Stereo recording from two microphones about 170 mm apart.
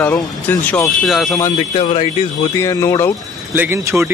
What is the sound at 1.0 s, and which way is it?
Speech, centre (ahead or behind).